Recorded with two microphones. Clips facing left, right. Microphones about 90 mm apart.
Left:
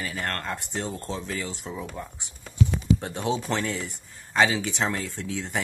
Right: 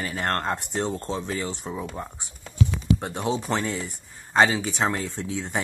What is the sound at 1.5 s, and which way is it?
Speech, 15° right (ahead or behind).